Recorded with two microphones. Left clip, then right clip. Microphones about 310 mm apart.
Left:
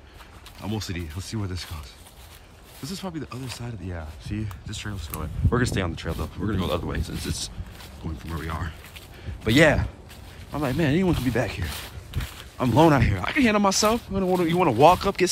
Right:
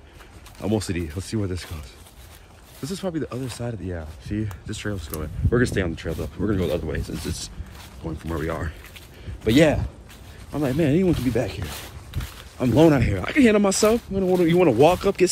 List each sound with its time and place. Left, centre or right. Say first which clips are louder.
0.6 s speech: right 7 dB; centre
2.8 s speech: right 6 dB; centre
8.2 s speech: right 5 dB; centre
9.4 s speech: even; centre